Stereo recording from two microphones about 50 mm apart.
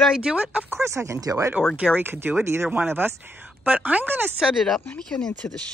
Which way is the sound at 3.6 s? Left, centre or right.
Right.